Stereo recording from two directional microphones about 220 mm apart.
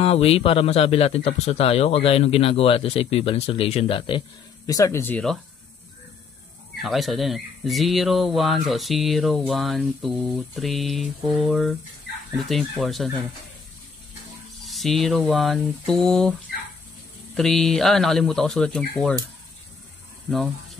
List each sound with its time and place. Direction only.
0.0 s a man's voice: 25° left (ahead or behind); by 5.4 s 5° left (ahead or behind)
6.8 s speech: centre (ahead or behind)
14.6 s speech: centre (ahead or behind)
17.4 s speech: centre (ahead or behind)